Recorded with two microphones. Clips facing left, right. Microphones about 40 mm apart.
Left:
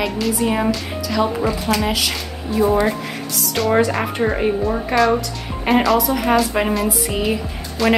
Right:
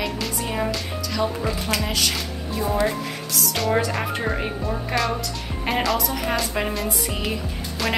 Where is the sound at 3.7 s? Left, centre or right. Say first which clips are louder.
Left 6 dB; centre.